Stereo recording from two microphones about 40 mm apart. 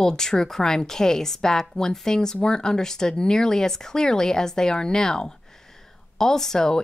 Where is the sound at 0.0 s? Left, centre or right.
Centre.